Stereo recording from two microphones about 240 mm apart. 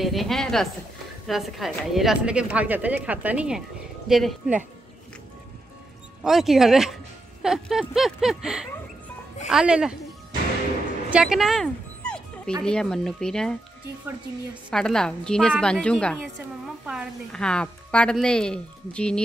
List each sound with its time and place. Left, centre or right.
0.0 s a woman's voice: centre
6.2 s a woman's voice: centre
11.1 s dog: centre
12.6 s a woman's voice: centre